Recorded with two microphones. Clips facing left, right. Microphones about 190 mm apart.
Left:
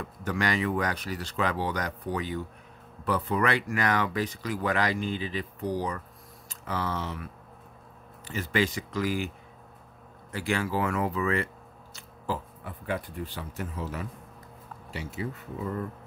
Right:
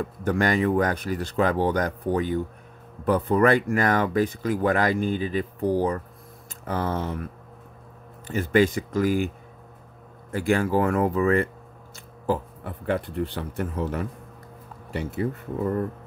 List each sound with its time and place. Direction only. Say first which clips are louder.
0.0 s speech: right 6 dB; 50° right (ahead or behind)
8.3 s speech: right 7 dB; 50° right (ahead or behind)
10.3 s speech: right 7 dB; 50° right (ahead or behind)
12.3 s speech: right 7 dB; 60° right (ahead or behind)